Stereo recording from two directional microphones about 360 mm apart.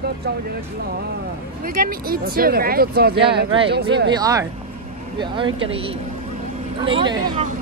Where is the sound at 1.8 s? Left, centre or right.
Right.